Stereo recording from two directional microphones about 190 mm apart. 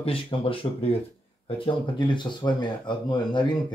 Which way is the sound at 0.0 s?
30° left (ahead or behind).